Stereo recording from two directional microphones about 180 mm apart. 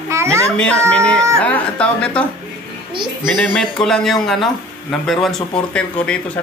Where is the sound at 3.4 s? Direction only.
5° left (ahead or behind).